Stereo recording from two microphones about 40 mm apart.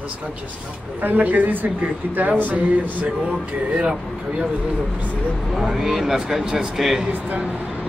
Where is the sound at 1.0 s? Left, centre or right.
Right.